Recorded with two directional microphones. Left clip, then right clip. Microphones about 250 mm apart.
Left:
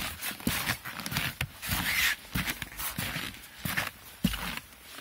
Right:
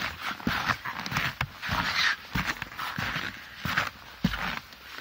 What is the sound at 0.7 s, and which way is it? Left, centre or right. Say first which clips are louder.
Horse: right 5 dB; right.